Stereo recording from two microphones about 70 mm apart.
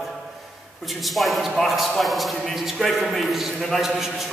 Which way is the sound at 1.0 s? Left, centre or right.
Centre.